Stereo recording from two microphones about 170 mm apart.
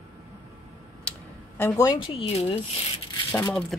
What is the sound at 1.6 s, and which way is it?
Speech, 20° left (ahead or behind).